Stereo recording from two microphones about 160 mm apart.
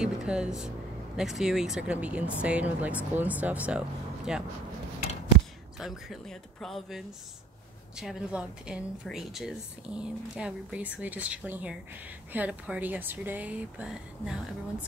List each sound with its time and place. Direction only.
0.0 s speech: 5° right (ahead or behind)
5.8 s speech: centre (ahead or behind)